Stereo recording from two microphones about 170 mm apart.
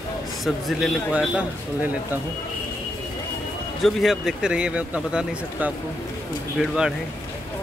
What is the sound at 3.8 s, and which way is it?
A man's voice, centre (ahead or behind).